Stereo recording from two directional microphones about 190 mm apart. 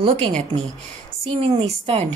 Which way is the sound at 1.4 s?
30° right (ahead or behind).